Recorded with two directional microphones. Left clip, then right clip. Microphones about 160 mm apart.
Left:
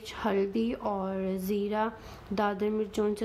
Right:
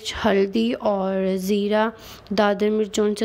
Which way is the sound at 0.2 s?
30° right (ahead or behind).